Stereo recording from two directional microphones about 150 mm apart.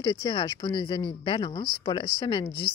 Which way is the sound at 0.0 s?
30° left (ahead or behind).